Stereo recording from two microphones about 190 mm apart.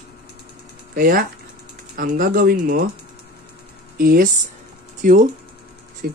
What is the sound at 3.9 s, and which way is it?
Speech, 50° right (ahead or behind).